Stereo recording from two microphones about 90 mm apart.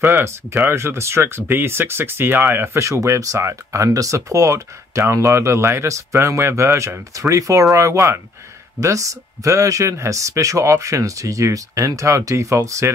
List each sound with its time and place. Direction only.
0.0 s speech: 30° right (ahead or behind)